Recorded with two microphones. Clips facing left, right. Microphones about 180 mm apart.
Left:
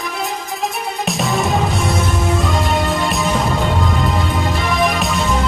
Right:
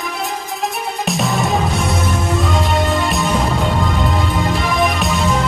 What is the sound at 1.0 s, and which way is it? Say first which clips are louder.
Music: even; centre (ahead or behind).